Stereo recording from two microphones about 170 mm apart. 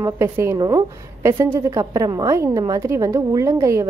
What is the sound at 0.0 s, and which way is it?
A woman's voice, 15° right (ahead or behind).